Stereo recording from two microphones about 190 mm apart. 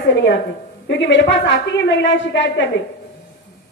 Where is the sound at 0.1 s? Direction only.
65° left (ahead or behind).